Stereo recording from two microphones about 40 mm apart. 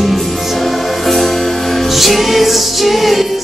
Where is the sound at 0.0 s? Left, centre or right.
Centre.